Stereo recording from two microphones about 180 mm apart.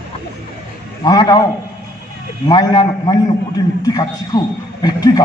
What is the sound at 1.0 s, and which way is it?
Speech, 20° left (ahead or behind).